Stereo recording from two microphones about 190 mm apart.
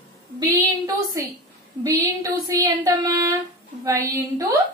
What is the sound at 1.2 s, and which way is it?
A woman's voice, 15° right (ahead or behind).